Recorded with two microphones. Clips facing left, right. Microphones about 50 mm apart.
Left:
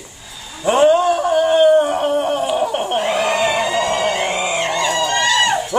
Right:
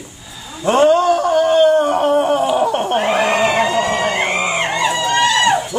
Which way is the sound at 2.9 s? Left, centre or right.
Right.